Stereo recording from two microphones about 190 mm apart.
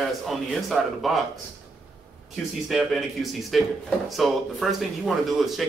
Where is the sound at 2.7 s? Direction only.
Centre (ahead or behind).